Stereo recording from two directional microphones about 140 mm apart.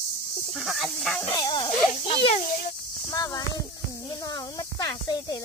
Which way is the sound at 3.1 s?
25° left (ahead or behind).